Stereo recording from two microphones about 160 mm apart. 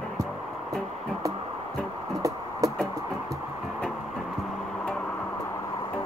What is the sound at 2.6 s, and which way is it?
Music, 20° right (ahead or behind).